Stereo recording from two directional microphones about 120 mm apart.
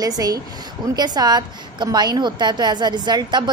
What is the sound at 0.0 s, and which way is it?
A woman's voice, 30° right (ahead or behind).